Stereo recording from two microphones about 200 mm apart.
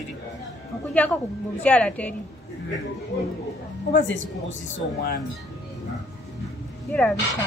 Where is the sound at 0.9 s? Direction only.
5° left (ahead or behind).